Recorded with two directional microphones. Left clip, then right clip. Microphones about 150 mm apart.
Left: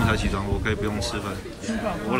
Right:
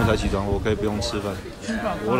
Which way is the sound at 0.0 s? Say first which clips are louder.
Right 3 dB; 20° right (ahead or behind).